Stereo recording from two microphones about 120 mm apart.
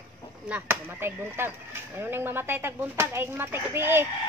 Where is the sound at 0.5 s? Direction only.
20° right (ahead or behind).